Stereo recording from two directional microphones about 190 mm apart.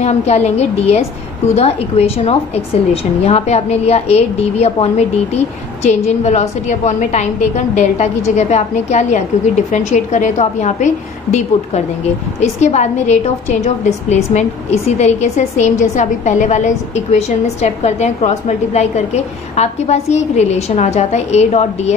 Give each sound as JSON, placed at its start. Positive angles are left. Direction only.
{"t": 0.0, "sound": "a woman's voice", "side_deg": 35}
{"t": 12.4, "sound": "a woman's voice", "side_deg": 35}